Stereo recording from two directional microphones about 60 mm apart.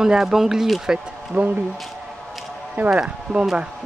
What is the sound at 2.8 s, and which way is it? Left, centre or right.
Speech, centre.